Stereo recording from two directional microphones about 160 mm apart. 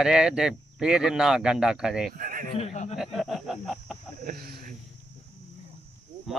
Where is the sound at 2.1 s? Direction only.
60° right (ahead or behind).